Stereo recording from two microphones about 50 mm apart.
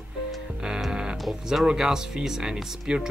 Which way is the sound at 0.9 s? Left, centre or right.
Centre.